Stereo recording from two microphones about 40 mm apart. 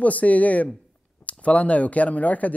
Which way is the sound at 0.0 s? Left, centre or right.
Left.